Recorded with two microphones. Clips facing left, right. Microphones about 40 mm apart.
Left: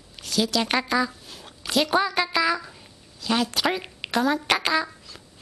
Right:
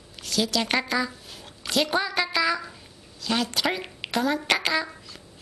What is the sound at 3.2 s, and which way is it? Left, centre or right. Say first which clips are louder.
Speech: left 2 dB; centre.